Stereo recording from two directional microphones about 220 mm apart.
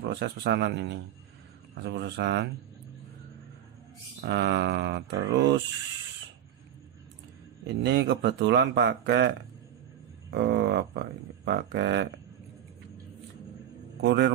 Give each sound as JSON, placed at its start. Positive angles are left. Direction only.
{"t": 0.1, "sound": "speech", "side_deg": -50}
{"t": 4.2, "sound": "speech", "side_deg": -50}
{"t": 7.6, "sound": "speech", "side_deg": -50}
{"t": 10.3, "sound": "speech", "side_deg": -50}
{"t": 14.0, "sound": "speech", "side_deg": -50}